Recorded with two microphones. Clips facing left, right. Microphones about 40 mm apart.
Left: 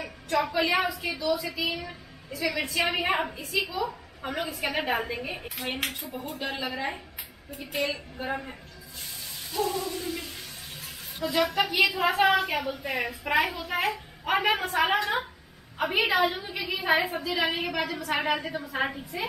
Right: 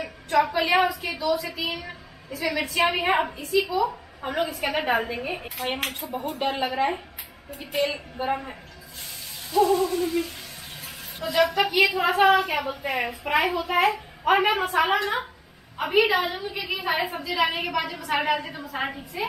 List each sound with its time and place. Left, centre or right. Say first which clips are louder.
0.6 s a woman's voice: right 4 dB; centre
1.8 s a sound: right 1 dB; centre
2.6 s a woman's voice: right 5 dB; centre
5.9 s a woman's voice: right 5 dB; right; by 8.5 s centre
9.5 s a sound: right 9 dB; centre
11.1 s a woman's voice: right 3 dB; centre
12.6 s a woman's voice: right 3 dB; centre
14.7 s a woman's voice: right 2 dB; centre